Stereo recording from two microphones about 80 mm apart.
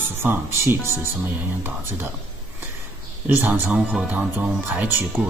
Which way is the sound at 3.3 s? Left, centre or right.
Right.